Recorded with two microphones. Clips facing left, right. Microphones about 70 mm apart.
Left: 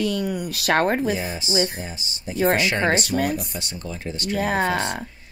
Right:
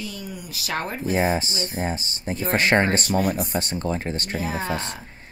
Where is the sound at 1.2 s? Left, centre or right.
Right.